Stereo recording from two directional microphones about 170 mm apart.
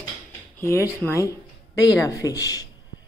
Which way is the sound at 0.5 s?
15° left (ahead or behind).